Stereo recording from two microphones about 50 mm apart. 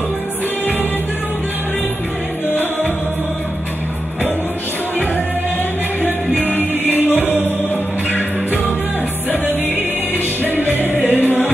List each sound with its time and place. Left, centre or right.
6.4 s music: left
10.1 s music: left